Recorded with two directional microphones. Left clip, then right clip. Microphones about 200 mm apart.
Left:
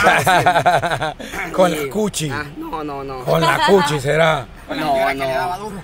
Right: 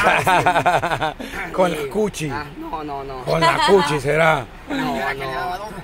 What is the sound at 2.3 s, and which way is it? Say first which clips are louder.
Speech: left 2 dB; 25° left (ahead or behind).